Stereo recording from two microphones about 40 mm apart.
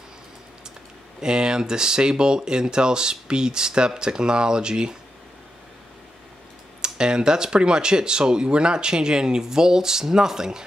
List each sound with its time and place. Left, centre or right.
1.2 s speech: centre
6.8 s speech: right